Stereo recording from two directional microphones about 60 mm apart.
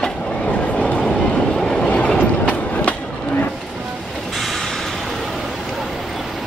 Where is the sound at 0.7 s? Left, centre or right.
Centre.